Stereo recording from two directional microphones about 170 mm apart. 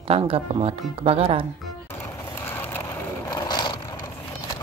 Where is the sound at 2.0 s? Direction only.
15° left (ahead or behind).